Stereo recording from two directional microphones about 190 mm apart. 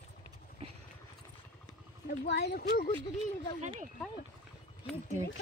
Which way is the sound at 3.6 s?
40° right (ahead or behind).